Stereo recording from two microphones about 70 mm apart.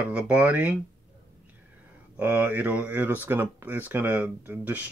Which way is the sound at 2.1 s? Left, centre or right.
Right.